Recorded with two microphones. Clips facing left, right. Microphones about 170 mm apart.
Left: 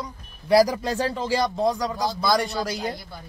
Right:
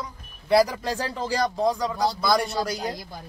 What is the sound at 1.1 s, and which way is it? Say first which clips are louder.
Speech: left 2 dB; centre (ahead or behind).